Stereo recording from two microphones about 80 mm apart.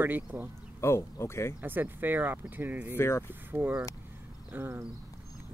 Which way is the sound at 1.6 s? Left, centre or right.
Right.